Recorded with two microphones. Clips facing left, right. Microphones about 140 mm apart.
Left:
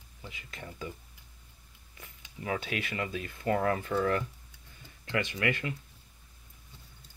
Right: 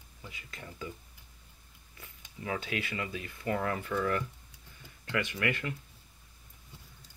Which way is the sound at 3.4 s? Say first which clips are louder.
Left 4 dB; 30° left (ahead or behind).